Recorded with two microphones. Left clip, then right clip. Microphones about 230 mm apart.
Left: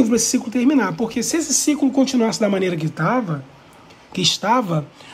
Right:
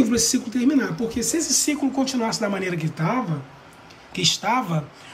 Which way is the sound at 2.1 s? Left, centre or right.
Left.